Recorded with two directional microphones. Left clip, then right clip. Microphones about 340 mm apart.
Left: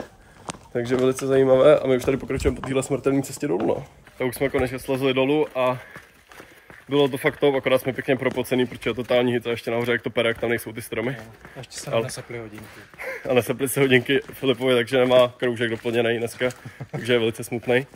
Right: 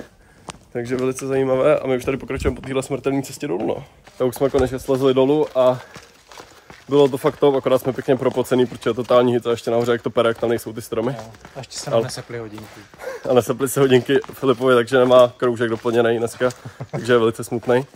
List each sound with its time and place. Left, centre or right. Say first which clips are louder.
0.5 s speech: left 1 dB; centre
6.9 s speech: right 5 dB; centre
13.4 s speech: right 4 dB; centre
13.7 s speech: right 4 dB; right
13.9 s speech: right 3 dB; centre
14.7 s speech: right 5 dB; right
15.2 s speech: right 5 dB; centre
15.9 s speech: right 5 dB; right
17.0 s speech: right 5 dB; centre